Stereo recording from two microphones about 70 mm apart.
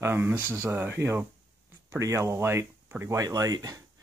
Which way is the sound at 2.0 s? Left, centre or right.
Right.